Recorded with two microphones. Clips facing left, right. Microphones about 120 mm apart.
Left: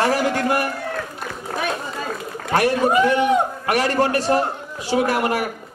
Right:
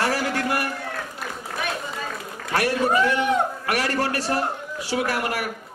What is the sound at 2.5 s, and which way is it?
A man's voice, 20° left (ahead or behind).